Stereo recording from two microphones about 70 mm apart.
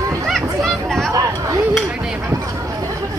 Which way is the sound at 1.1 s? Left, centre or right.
Right.